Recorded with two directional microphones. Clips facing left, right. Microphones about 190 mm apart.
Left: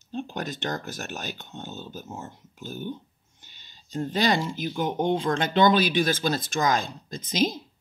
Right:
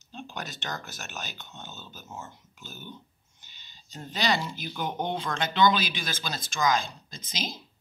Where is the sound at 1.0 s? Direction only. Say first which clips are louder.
Left 6 dB; 35° left (ahead or behind).